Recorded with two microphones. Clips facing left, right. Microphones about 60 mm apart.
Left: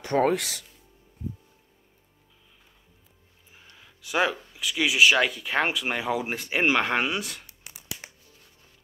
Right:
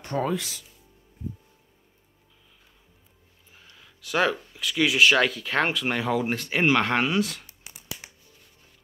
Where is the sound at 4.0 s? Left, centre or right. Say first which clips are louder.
Right 1 dB; centre.